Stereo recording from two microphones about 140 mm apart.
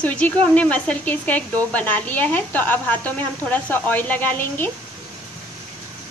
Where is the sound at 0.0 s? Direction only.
10° left (ahead or behind).